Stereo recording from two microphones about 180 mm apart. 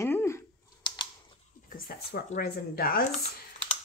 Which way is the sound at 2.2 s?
55° left (ahead or behind).